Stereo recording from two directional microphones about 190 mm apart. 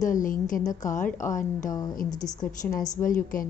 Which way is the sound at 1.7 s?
20° left (ahead or behind).